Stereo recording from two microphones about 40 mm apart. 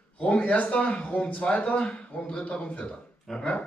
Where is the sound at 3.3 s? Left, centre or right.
Centre.